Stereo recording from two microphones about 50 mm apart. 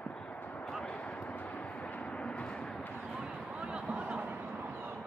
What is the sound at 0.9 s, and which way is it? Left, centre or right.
Vehicle, left.